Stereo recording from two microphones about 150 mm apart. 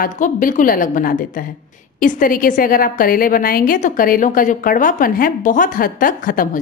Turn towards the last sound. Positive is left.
turn(degrees=65)  # may be behind; listen again after turning